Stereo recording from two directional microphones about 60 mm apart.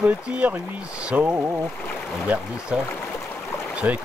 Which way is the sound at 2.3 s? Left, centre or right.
Right.